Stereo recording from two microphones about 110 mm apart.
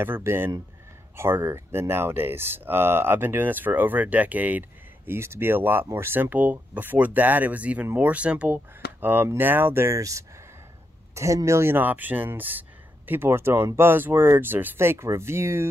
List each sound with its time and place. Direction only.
0.0 s speech: 20° right (ahead or behind)